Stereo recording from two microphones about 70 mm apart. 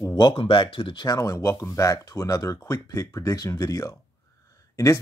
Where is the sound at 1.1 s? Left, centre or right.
Left.